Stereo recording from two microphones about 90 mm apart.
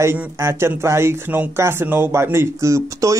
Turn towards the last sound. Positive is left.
turn(degrees=-35)  # may be behind; listen again after turning